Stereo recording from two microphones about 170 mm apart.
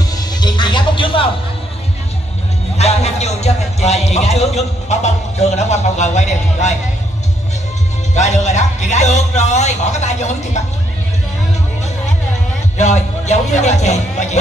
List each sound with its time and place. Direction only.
0.1 s music: 25° left (ahead or behind)
2.8 s a man's voice: 40° left (ahead or behind)
8.1 s speech: 40° left (ahead or behind)
12.7 s speech: 40° left (ahead or behind)